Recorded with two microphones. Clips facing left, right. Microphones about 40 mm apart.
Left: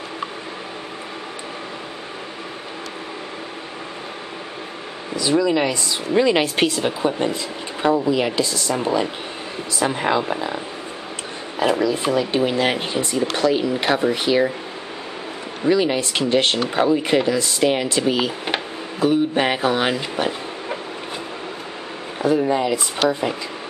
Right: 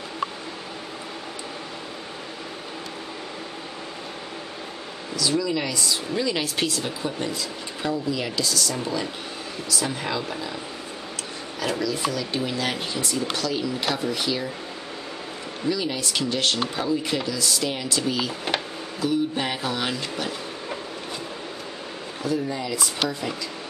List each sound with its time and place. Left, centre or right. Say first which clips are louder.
5.1 s speech: left 6 dB; left
11.6 s speech: left 7 dB; left
15.6 s speech: left 8 dB; left
22.2 s speech: left 9 dB; left